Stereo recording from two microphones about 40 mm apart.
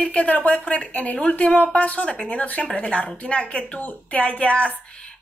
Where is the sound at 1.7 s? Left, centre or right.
Left.